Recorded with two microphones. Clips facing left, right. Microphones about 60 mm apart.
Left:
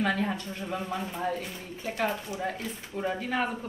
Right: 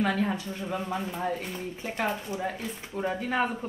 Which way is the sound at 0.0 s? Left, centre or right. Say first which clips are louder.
Right 1 dB; centre.